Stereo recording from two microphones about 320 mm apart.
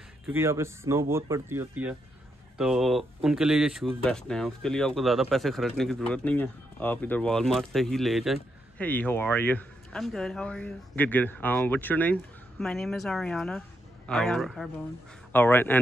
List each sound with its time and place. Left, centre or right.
0.3 s speech: centre